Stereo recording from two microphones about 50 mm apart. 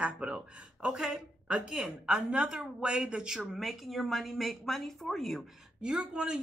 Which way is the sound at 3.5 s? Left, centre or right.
Centre.